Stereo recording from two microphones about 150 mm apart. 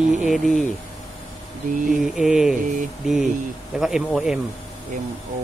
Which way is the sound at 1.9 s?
Centre (ahead or behind).